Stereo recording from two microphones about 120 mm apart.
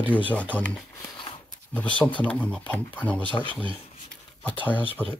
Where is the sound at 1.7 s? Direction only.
10° left (ahead or behind).